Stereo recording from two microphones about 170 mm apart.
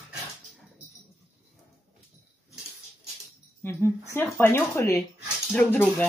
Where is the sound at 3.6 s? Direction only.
15° left (ahead or behind).